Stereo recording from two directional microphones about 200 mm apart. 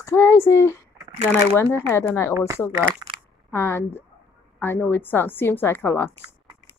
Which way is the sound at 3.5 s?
10° left (ahead or behind).